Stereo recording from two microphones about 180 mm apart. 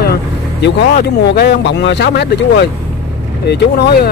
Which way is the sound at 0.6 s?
65° left (ahead or behind).